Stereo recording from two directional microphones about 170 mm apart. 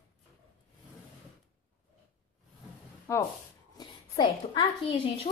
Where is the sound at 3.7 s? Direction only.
25° left (ahead or behind).